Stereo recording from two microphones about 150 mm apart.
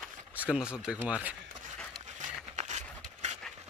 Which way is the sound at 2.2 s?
50° right (ahead or behind).